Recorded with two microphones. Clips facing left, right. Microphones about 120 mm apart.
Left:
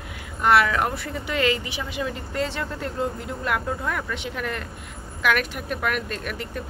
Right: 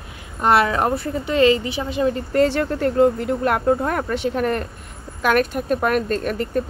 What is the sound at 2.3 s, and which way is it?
A woman's voice, 55° right (ahead or behind).